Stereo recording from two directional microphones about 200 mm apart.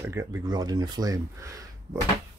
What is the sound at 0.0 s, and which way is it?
Speech, 10° right (ahead or behind).